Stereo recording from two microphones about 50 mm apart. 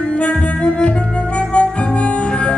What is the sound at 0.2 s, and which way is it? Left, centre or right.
Music, left.